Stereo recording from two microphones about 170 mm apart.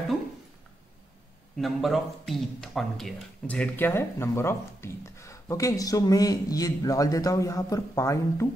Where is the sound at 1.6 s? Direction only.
Centre (ahead or behind).